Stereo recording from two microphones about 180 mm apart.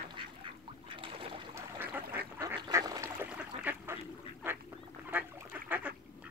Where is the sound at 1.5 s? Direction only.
10° right (ahead or behind).